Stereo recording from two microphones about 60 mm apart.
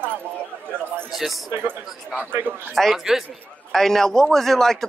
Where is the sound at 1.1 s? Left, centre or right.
Centre.